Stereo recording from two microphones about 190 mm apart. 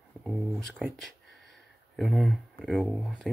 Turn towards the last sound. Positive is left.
turn(degrees=0)  # may be behind; listen again after turning